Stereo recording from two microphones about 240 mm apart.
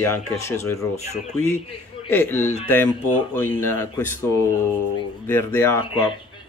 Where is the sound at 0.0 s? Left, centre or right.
Centre.